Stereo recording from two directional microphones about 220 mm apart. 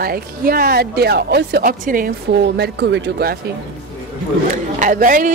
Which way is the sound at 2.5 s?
50° right (ahead or behind).